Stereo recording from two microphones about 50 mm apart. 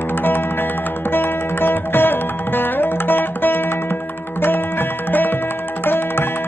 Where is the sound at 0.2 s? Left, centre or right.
Left.